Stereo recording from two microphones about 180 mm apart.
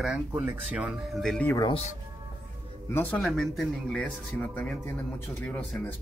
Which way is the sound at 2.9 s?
10° left (ahead or behind).